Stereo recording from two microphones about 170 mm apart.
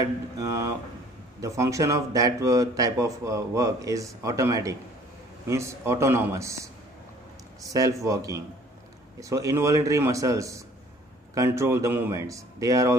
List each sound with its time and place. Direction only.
0.4 s speech: 20° right (ahead or behind)